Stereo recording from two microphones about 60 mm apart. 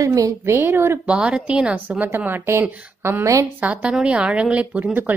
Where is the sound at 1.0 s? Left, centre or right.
Centre.